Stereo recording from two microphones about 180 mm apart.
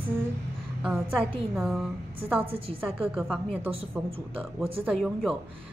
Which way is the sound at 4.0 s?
5° right (ahead or behind).